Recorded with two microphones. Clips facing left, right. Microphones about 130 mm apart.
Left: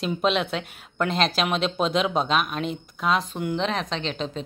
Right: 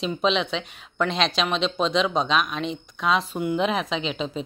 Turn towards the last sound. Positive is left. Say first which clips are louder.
# right 2 dB
turn(degrees=-5)  # may be behind; listen again after turning